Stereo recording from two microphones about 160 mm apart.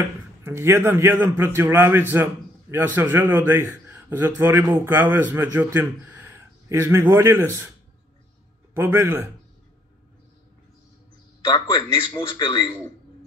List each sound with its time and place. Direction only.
0.4 s a man's voice: 15° right (ahead or behind)
8.7 s a man's voice: 15° right (ahead or behind)
12.1 s speech: 30° left (ahead or behind)